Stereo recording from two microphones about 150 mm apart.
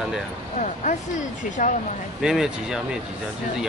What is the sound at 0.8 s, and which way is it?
Speech, 55° left (ahead or behind).